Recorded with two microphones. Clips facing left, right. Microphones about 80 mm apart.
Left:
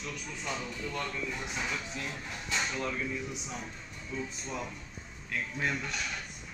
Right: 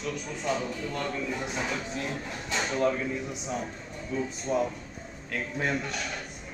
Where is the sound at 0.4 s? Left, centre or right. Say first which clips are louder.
Right 7 dB; right.